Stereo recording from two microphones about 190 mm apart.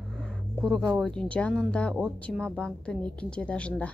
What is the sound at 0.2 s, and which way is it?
A woman's voice, 5° left (ahead or behind).